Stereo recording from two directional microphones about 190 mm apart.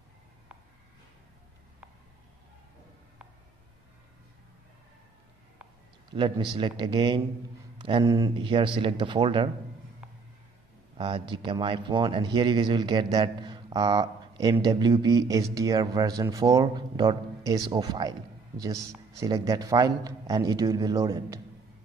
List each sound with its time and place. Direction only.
6.1 s speech: 25° right (ahead or behind)
11.0 s a man's voice: 25° right (ahead or behind)